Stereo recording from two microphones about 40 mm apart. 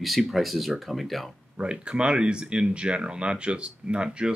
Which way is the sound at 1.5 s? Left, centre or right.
Right.